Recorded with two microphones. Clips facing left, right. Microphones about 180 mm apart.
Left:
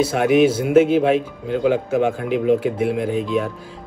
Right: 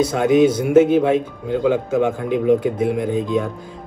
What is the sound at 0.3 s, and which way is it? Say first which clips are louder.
Speech: right 1 dB; 25° left (ahead or behind).